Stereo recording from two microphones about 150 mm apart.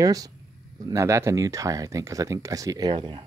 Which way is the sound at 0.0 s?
25° right (ahead or behind).